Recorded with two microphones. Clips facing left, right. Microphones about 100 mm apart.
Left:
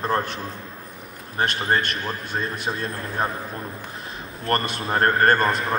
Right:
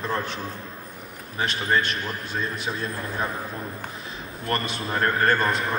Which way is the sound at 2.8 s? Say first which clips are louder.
Left 3 dB; 30° left (ahead or behind).